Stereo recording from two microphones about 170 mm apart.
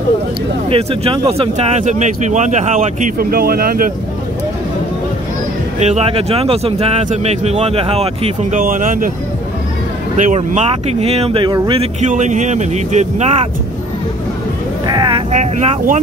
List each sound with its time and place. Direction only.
0.7 s speech: 35° right (ahead or behind)
3.2 s speech: 60° right (ahead or behind)
5.8 s speech: 40° right (ahead or behind)
10.1 s speech: 45° right (ahead or behind)
14.9 s vehicle: 25° right (ahead or behind)
15.3 s speech: 40° right (ahead or behind)